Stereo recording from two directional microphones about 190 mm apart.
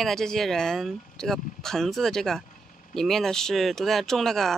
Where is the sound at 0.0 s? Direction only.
Centre (ahead or behind).